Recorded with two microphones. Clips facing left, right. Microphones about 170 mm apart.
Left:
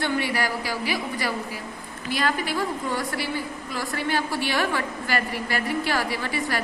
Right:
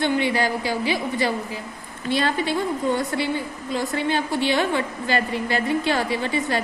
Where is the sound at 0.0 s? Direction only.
20° right (ahead or behind).